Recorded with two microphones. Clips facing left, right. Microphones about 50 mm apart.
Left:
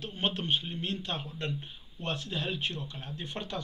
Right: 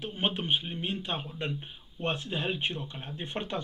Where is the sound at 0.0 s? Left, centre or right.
Centre.